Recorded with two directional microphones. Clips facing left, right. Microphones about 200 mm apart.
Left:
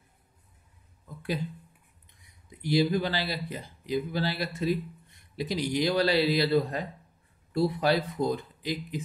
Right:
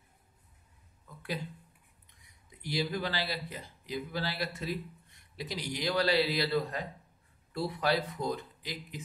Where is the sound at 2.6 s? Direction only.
25° left (ahead or behind).